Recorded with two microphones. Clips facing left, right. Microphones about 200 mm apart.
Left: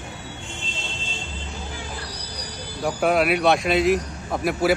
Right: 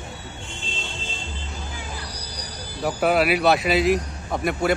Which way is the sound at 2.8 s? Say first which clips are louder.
Even; centre (ahead or behind).